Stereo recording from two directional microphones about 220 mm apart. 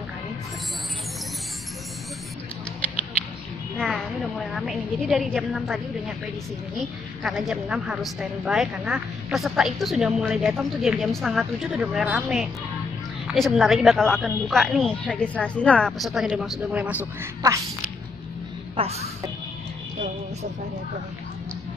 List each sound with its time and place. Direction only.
3.7 s a woman's voice: centre (ahead or behind)
18.8 s speech: 30° right (ahead or behind)